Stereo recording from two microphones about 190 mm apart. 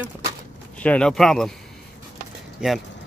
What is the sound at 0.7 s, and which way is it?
Speech, 5° left (ahead or behind).